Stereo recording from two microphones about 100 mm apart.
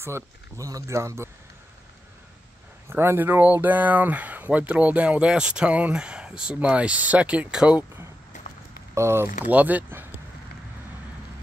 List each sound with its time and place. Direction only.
0.0 s speech: 30° right (ahead or behind)
2.9 s speech: 20° right (ahead or behind)
8.9 s speech: 25° right (ahead or behind)